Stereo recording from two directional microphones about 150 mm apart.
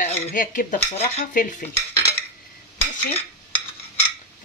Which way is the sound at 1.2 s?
60° left (ahead or behind).